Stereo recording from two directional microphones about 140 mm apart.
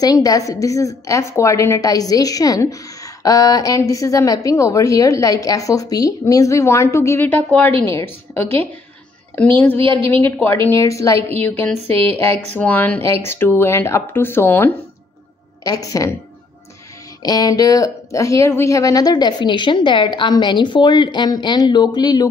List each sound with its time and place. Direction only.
0.0 s a woman's voice: 25° left (ahead or behind)
9.9 s a woman's voice: 15° left (ahead or behind)
12.5 s a woman's voice: 10° left (ahead or behind)
17.2 s a woman's voice: 25° left (ahead or behind)